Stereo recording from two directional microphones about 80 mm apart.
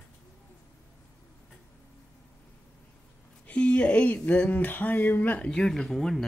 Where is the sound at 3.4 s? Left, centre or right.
Centre.